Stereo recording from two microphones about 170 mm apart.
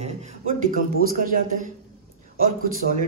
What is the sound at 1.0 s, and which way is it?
Speech, 55° right (ahead or behind).